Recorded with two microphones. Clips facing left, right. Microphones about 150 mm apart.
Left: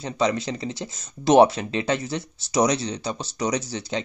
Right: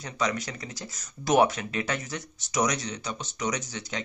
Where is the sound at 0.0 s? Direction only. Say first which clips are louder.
Left 6 dB; 30° left (ahead or behind).